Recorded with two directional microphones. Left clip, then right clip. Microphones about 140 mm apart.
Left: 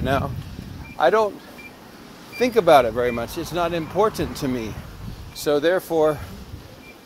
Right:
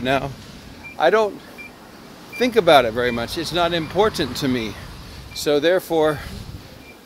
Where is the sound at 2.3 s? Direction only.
20° right (ahead or behind).